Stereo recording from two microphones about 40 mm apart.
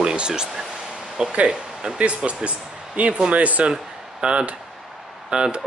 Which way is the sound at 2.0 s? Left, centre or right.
Right.